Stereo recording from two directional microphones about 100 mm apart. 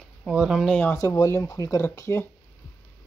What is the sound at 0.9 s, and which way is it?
Speech, 30° left (ahead or behind).